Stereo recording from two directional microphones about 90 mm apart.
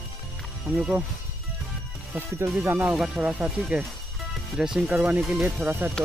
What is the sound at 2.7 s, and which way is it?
Speech, 20° right (ahead or behind).